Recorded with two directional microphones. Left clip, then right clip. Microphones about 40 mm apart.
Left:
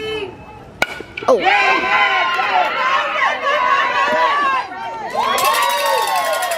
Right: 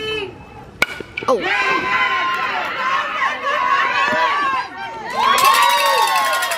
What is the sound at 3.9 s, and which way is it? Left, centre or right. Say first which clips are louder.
Chatter: left 1 dB; centre.